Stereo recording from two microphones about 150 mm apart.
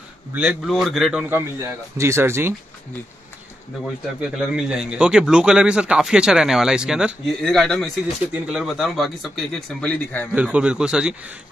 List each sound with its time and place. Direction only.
0.3 s speech: 5° right (ahead or behind)
1.3 s a man's voice: 20° right (ahead or behind)
4.2 s speech: 5° right (ahead or behind)
10.3 s a man's voice: 10° right (ahead or behind)